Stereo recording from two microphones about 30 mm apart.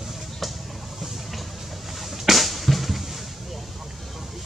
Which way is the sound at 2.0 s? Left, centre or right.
Centre.